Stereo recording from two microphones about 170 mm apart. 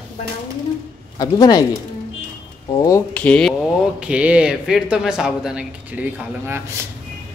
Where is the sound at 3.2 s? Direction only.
5° left (ahead or behind).